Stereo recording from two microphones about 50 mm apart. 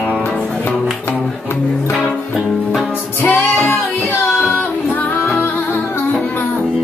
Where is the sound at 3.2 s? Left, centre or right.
Left.